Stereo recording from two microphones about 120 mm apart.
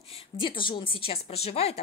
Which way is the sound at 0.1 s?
45° left (ahead or behind).